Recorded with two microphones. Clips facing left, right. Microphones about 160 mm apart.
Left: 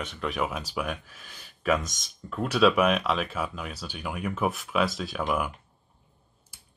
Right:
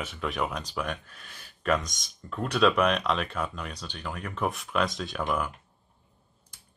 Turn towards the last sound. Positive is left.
turn(degrees=10)  # may be behind; listen again after turning